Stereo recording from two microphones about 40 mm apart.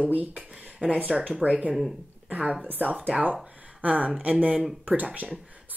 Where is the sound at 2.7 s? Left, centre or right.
Right.